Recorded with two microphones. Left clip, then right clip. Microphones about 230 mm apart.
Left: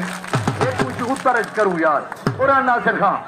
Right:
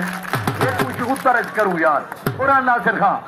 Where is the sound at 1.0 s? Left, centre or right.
Right.